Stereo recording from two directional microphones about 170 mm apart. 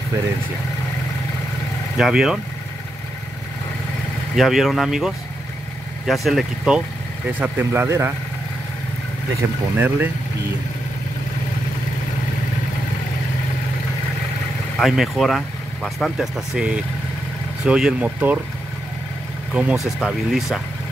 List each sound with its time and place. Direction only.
2.0 s speech: 5° right (ahead or behind)
4.4 s speech: centre (ahead or behind)
9.4 s speech: 15° right (ahead or behind)
14.8 s speech: centre (ahead or behind)
19.5 s speech: 5° right (ahead or behind)